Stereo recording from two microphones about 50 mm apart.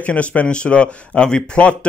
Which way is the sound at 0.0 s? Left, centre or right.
Left.